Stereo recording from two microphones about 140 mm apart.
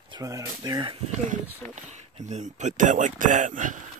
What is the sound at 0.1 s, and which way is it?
Speech, 25° right (ahead or behind).